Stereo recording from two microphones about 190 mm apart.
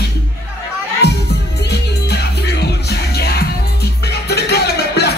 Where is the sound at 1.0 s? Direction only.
60° left (ahead or behind).